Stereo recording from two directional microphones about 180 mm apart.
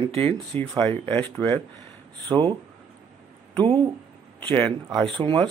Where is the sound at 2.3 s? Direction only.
25° right (ahead or behind).